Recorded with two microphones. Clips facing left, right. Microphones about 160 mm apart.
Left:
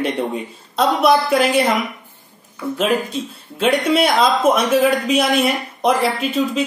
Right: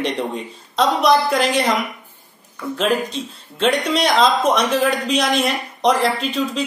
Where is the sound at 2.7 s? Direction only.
5° left (ahead or behind).